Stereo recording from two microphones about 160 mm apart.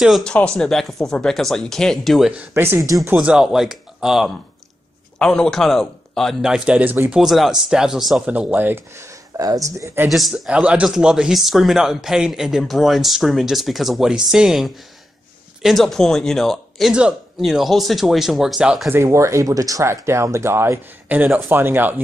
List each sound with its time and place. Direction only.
0.0 s a man's voice: centre (ahead or behind)
2.5 s speech: 15° right (ahead or behind)
3.1 s a man's voice: 5° right (ahead or behind)
10.0 s a man's voice: centre (ahead or behind)